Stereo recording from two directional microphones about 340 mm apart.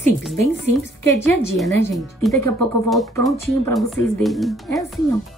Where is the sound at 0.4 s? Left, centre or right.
Centre.